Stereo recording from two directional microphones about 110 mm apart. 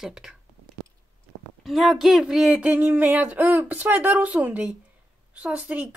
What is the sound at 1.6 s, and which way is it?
Speech, centre (ahead or behind).